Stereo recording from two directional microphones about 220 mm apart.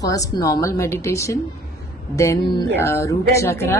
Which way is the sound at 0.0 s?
15° left (ahead or behind).